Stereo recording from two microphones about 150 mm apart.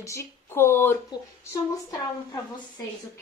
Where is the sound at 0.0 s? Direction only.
20° left (ahead or behind).